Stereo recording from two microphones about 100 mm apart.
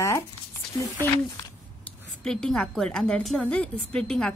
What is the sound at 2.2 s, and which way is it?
A woman's voice, 5° left (ahead or behind).